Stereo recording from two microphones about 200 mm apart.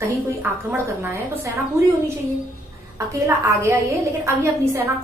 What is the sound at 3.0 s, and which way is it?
A woman's voice, 15° right (ahead or behind).